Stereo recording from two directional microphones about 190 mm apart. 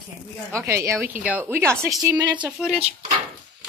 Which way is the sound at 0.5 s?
15° right (ahead or behind).